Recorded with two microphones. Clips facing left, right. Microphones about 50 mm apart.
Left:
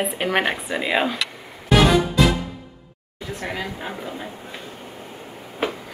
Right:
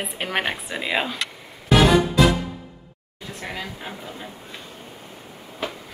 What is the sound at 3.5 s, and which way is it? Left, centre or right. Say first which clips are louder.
Speech: left 2 dB; centre.